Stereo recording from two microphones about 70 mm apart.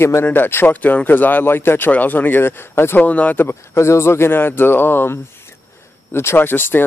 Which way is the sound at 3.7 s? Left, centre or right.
Left.